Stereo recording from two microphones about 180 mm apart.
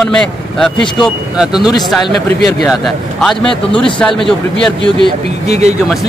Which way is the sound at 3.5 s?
30° left (ahead or behind).